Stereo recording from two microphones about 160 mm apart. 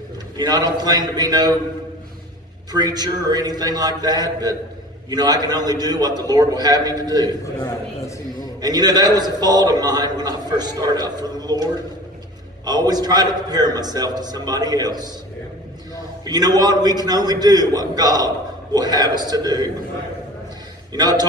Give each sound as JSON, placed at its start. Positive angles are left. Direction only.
{"t": 0.4, "sound": "a man's voice", "side_deg": -25}
{"t": 2.7, "sound": "a man's voice", "side_deg": -25}
{"t": 7.4, "sound": "a man's voice", "side_deg": 20}
{"t": 8.5, "sound": "a man's voice", "side_deg": -25}
{"t": 16.3, "sound": "a man's voice", "side_deg": -25}
{"t": 20.9, "sound": "a man's voice", "side_deg": -25}